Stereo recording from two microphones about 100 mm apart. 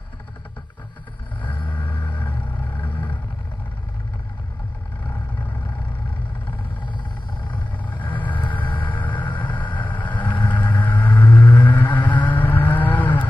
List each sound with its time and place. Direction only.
1.7 s vehicle: 15° left (ahead or behind)
7.4 s vehicle: 15° left (ahead or behind)